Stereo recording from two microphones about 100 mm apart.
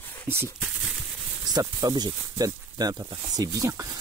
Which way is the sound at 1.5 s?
40° right (ahead or behind).